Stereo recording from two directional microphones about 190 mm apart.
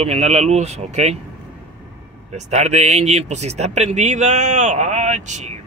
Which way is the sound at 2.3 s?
35° right (ahead or behind).